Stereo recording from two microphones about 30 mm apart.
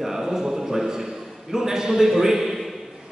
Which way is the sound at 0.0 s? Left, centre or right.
Centre.